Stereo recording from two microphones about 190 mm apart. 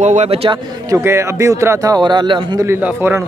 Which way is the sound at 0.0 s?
35° right (ahead or behind).